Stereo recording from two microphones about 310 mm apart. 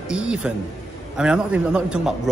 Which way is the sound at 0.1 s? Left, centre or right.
Centre.